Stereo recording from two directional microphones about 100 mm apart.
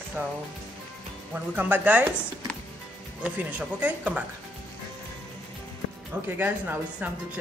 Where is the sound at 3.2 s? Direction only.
15° right (ahead or behind).